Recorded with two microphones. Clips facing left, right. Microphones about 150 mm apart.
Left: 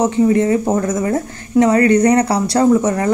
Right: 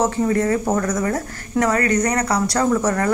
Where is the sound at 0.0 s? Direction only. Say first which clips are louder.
Left 5 dB; 20° left (ahead or behind).